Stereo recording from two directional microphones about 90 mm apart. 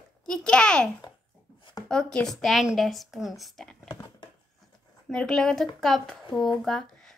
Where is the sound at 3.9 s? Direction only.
50° left (ahead or behind).